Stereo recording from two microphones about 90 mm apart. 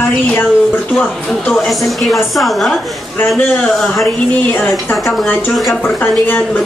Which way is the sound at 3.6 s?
5° left (ahead or behind).